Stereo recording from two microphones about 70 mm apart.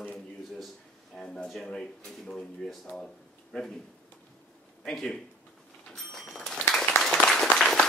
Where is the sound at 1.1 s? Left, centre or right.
Centre.